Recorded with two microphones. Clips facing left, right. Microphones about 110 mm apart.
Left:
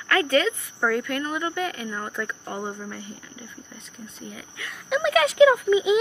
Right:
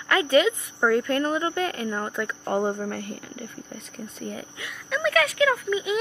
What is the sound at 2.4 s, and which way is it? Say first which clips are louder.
Speech: right 7 dB; 50° right (ahead or behind).